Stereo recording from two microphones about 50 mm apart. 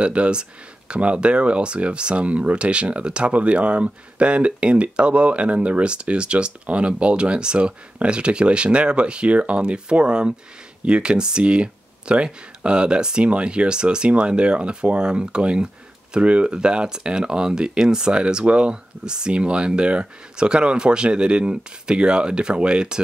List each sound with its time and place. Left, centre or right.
0.0 s speech: right